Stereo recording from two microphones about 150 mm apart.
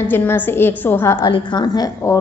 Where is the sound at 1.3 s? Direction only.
30° left (ahead or behind).